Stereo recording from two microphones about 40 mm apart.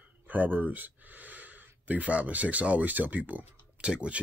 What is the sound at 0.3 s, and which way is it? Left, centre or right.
Speech, right.